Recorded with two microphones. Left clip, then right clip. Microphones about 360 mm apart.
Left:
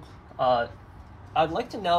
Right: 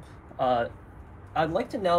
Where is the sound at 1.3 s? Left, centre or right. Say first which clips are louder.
Left 2 dB; centre.